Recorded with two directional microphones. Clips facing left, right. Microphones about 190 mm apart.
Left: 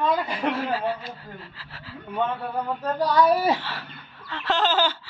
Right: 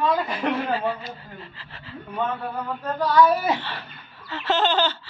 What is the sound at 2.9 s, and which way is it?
Speech, 35° left (ahead or behind).